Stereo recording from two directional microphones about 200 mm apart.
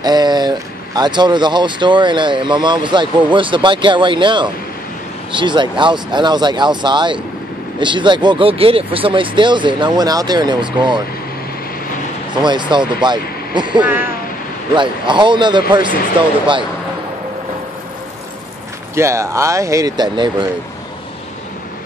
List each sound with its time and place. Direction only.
0.0 s speech: 20° right (ahead or behind)
12.4 s speech: 20° right (ahead or behind)
18.9 s speech: 15° right (ahead or behind)